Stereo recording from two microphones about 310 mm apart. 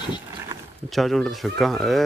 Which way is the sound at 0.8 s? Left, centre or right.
Centre.